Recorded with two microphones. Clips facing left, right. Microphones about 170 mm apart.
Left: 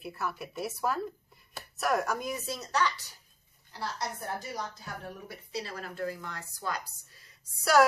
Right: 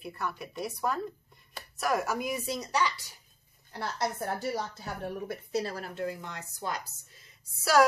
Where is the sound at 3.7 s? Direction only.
55° right (ahead or behind); by 6.8 s 20° right (ahead or behind).